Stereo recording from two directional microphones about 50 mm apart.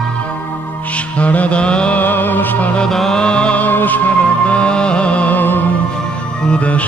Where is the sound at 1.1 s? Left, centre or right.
Left.